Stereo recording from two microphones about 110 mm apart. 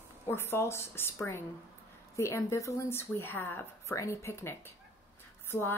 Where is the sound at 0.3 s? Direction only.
20° left (ahead or behind).